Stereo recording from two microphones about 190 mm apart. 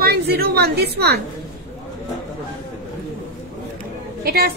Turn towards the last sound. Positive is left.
turn(degrees=-55)  # may be behind; listen again after turning